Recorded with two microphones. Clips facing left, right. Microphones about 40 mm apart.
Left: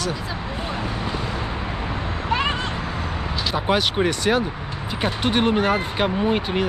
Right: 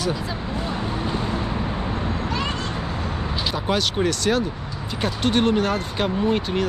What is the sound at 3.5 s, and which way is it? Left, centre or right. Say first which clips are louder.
Speech: left 3 dB; centre.